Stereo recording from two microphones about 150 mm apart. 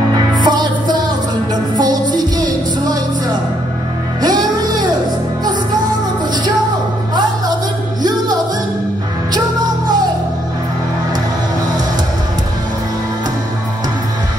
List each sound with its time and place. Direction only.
0.4 s music: 30° right (ahead or behind)
4.2 s music: 25° right (ahead or behind)